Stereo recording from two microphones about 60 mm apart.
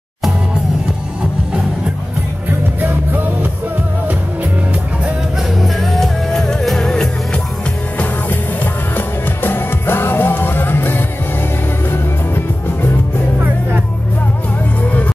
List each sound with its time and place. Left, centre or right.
2.8 s music: right
5.6 s music: centre
8.9 s music: left